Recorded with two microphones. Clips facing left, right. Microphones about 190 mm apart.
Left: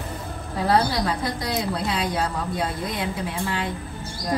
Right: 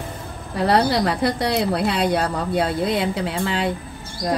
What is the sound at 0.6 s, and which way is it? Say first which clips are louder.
A woman's voice: right 3 dB; 75° right (ahead or behind).